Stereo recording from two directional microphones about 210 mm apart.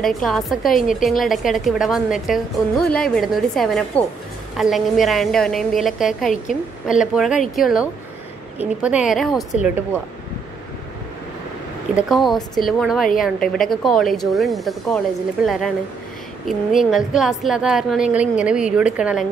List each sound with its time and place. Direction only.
0.0 s a woman's voice: centre (ahead or behind)
6.3 s a woman's voice: 40° left (ahead or behind)
7.0 s a woman's voice: 5° right (ahead or behind)
11.9 s a woman's voice: 5° right (ahead or behind)